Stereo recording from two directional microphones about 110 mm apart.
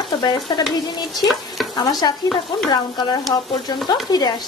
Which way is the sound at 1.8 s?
40° left (ahead or behind).